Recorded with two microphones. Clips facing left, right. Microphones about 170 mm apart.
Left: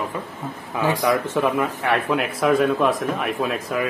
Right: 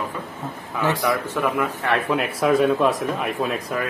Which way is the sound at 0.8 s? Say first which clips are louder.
Left 2 dB; 15° left (ahead or behind).